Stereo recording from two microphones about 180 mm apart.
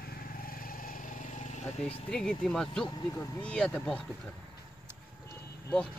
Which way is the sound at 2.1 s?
5° left (ahead or behind).